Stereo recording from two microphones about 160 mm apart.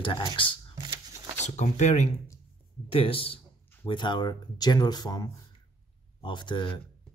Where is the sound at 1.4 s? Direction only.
45° left (ahead or behind).